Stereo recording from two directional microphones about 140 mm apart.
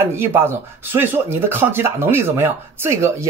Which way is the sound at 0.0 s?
15° right (ahead or behind).